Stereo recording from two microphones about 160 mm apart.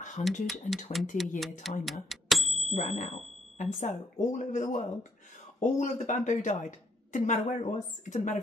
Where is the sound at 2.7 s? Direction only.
45° left (ahead or behind).